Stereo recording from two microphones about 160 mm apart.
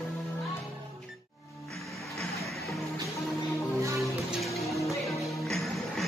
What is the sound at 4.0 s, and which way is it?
Music, centre (ahead or behind).